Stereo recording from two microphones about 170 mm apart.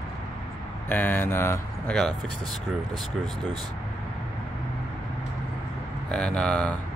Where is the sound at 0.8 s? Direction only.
10° left (ahead or behind).